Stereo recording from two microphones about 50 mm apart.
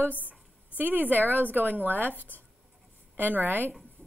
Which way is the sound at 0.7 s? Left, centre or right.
Right.